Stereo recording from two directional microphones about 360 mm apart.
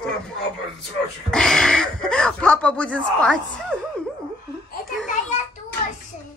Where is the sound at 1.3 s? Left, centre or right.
Centre.